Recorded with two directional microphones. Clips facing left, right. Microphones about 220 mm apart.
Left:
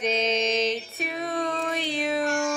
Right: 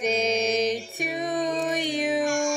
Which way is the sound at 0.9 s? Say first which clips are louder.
Right 2 dB; 15° right (ahead or behind).